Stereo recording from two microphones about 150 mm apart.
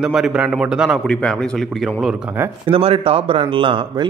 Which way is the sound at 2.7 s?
40° right (ahead or behind).